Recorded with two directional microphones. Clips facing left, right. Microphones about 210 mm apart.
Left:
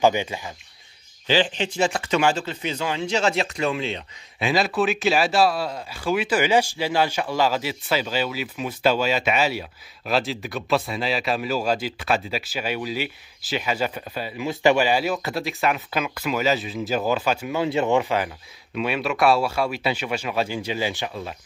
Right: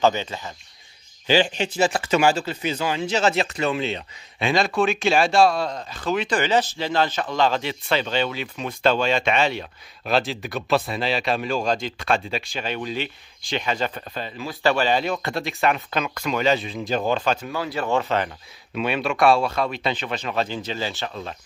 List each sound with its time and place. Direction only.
0.0 s speech: 15° left (ahead or behind)
1.2 s a man's voice: 10° right (ahead or behind); by 17.6 s 10° left (ahead or behind)
17.6 s speech: 20° left (ahead or behind)